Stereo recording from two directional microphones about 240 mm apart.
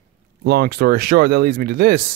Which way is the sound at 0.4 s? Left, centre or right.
Right.